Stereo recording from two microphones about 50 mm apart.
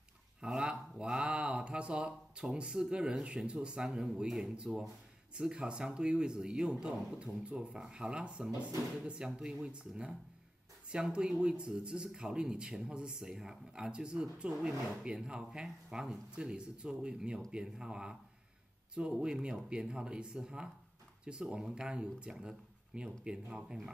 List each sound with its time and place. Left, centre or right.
0.7 s speech: centre
19.2 s speech: centre